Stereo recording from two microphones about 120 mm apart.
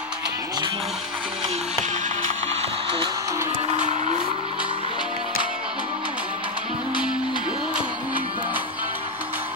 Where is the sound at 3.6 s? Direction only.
75° right (ahead or behind).